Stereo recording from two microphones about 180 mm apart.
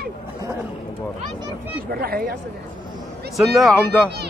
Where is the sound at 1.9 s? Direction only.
55° right (ahead or behind).